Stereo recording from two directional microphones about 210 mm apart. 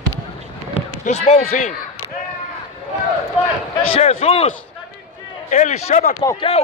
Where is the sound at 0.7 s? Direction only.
30° left (ahead or behind).